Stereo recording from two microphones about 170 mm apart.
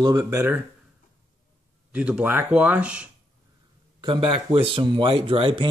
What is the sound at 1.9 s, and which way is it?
Speech, 5° right (ahead or behind).